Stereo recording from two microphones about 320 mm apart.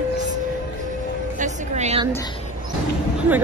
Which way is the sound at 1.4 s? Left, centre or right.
Centre.